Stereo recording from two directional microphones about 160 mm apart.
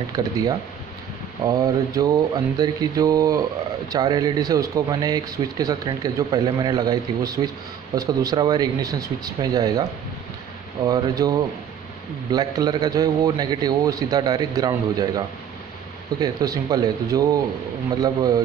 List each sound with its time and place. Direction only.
0.1 s speech: 25° right (ahead or behind)